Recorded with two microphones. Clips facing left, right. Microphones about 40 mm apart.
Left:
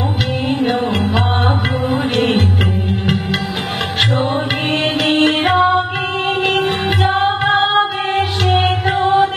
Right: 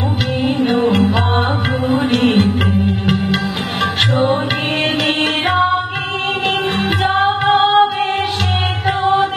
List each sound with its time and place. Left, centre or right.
0.6 s music: centre
5.0 s music: centre
7.0 s music: centre